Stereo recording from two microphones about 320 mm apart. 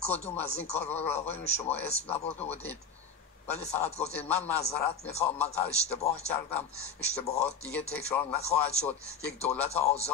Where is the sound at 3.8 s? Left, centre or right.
Centre.